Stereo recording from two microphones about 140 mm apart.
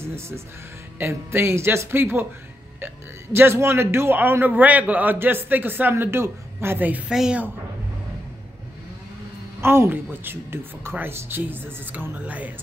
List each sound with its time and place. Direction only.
0.9 s a man's voice: 15° right (ahead or behind)
3.3 s a man's voice: 15° right (ahead or behind)
9.6 s a man's voice: 15° right (ahead or behind)